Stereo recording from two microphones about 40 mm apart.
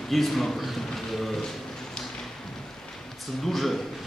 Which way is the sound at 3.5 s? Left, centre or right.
Centre.